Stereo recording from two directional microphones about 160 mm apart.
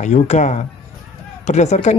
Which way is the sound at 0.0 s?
45° left (ahead or behind).